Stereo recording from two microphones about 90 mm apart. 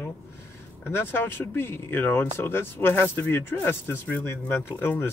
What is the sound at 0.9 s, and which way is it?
Speech, 25° left (ahead or behind).